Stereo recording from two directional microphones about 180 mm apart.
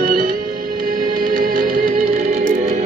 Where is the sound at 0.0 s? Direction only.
50° right (ahead or behind).